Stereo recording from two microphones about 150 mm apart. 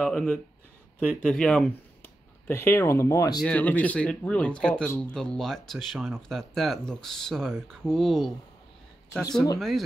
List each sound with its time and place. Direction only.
0.0 s speech: 10° left (ahead or behind)
2.4 s speech: 15° left (ahead or behind)
3.4 s speech: 10° left (ahead or behind)
9.6 s speech: centre (ahead or behind)